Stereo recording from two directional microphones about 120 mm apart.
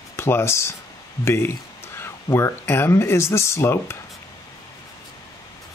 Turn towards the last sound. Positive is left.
turn(degrees=20)  # may be behind; listen again after turning